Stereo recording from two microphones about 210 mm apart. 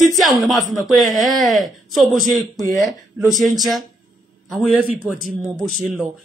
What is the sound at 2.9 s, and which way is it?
A man's voice, centre (ahead or behind).